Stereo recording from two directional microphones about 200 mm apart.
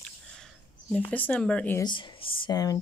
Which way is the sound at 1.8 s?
25° left (ahead or behind).